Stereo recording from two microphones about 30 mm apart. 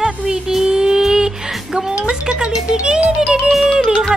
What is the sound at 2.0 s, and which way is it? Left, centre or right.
Music, right.